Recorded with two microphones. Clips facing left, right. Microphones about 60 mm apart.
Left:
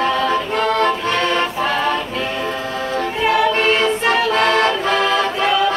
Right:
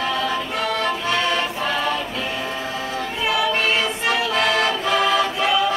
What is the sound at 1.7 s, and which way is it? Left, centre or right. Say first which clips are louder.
Music: left 2 dB; left.